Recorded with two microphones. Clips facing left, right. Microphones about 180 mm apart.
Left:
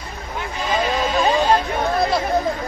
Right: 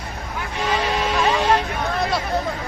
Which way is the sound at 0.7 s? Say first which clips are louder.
Left 2 dB; 70° right (ahead or behind).